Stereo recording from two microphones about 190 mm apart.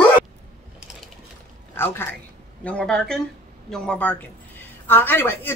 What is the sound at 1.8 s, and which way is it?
A man's voice, 10° left (ahead or behind).